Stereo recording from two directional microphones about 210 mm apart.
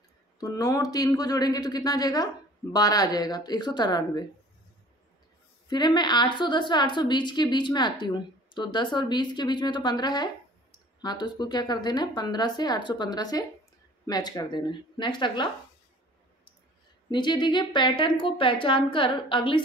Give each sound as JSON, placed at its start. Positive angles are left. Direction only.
{"t": 0.4, "sound": "a woman's voice", "side_deg": 20}
{"t": 5.7, "sound": "a woman's voice", "side_deg": 20}
{"t": 17.1, "sound": "a woman's voice", "side_deg": 20}